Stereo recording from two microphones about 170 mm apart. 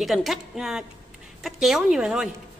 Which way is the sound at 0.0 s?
Centre (ahead or behind).